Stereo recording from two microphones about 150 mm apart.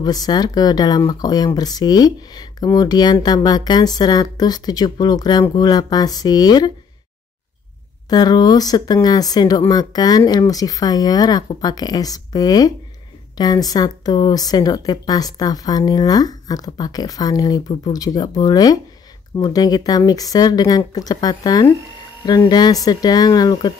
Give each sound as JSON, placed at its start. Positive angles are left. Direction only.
{"t": 0.0, "sound": "speech", "side_deg": 25}
{"t": 8.1, "sound": "speech", "side_deg": 25}